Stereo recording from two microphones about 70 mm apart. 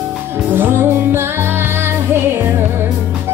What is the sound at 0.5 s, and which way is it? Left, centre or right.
Music, right.